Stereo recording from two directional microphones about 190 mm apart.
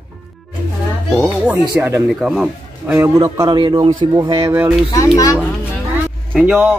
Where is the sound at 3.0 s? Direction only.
15° right (ahead or behind).